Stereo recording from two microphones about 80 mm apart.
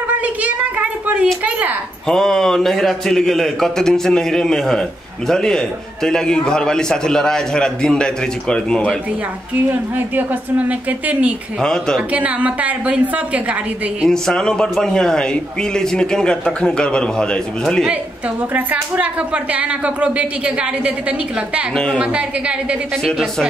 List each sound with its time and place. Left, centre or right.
0.1 s a sound: centre
2.0 s a man's voice: centre
9.7 s a woman's voice: right
11.6 s a man's voice: centre
12.1 s speech: centre
14.0 s a man's voice: centre
18.5 s speech: centre
21.9 s speech: centre